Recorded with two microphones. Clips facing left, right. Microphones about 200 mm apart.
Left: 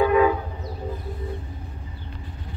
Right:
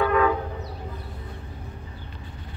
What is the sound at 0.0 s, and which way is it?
Train, 15° left (ahead or behind).